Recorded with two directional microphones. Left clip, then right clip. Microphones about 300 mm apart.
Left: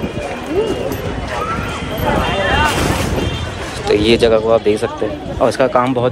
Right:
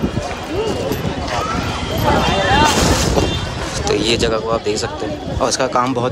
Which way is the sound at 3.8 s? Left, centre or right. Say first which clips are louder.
Left 5 dB; centre.